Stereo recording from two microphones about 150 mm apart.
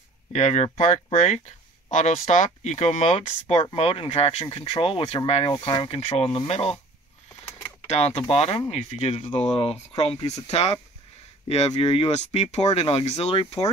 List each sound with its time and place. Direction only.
0.3 s speech: 50° left (ahead or behind)
7.8 s speech: 45° left (ahead or behind)